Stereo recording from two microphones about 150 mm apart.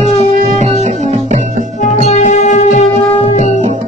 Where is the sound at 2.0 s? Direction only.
50° left (ahead or behind).